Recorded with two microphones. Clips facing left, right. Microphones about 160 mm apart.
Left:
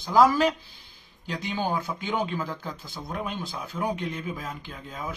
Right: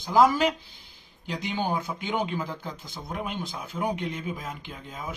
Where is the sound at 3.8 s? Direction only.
20° right (ahead or behind).